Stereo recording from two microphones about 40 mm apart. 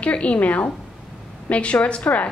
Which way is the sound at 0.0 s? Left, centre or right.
Left.